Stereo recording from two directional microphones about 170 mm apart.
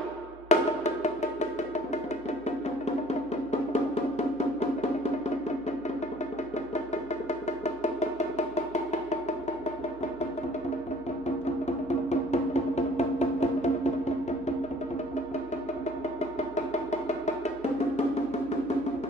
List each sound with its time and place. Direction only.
0.5 s music: 40° left (ahead or behind)
7.6 s music: 40° left (ahead or behind)
11.6 s music: 40° left (ahead or behind)